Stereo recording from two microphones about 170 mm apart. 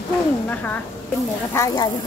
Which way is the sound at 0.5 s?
10° left (ahead or behind).